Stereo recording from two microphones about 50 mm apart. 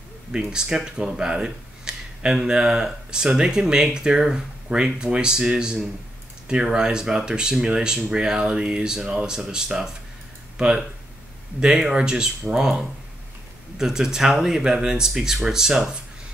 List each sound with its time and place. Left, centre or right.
0.4 s speech: centre
11.6 s speech: centre